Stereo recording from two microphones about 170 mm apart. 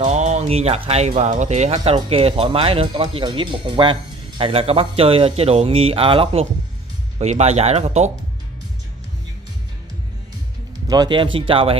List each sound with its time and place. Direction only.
0.1 s speech: 40° right (ahead or behind)
10.9 s speech: 25° right (ahead or behind)